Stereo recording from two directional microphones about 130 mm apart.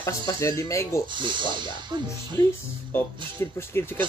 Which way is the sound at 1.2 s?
35° right (ahead or behind).